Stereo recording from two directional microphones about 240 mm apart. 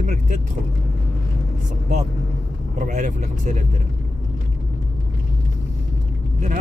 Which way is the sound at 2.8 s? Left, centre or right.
Right.